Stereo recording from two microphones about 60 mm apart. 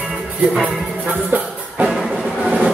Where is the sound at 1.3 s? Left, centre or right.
Right.